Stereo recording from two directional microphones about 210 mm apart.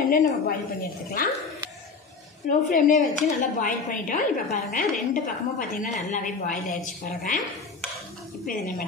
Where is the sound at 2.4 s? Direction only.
40° left (ahead or behind).